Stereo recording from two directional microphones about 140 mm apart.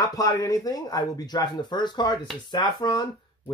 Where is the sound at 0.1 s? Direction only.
25° left (ahead or behind).